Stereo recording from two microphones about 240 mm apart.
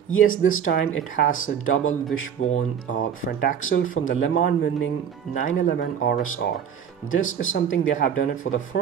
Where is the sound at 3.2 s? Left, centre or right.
Left.